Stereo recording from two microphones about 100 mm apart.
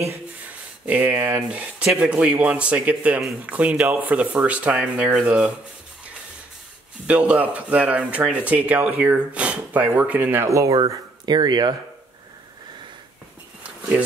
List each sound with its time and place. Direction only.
0.8 s speech: 15° right (ahead or behind)
7.1 s speech: 10° right (ahead or behind)
10.5 s speech: 30° right (ahead or behind)
11.2 s speech: 45° right (ahead or behind)